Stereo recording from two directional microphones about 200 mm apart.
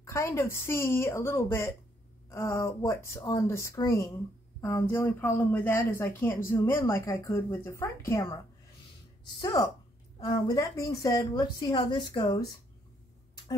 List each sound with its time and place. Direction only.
0.0 s speech: 15° left (ahead or behind)
9.4 s a woman's voice: 20° left (ahead or behind)